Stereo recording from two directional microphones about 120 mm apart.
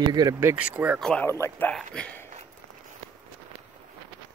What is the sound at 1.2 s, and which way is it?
Speech, 20° left (ahead or behind).